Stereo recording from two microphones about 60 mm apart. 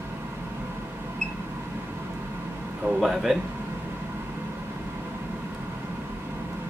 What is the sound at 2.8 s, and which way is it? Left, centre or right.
Speech, centre.